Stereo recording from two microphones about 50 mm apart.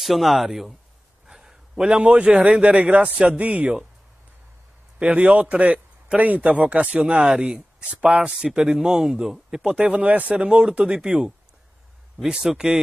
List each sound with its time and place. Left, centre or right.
0.0 s speech: centre
1.2 s a sound: centre
2.6 s a man's voice: right
4.9 s a man's voice: right
7.0 s a man's voice: centre
10.7 s speech: centre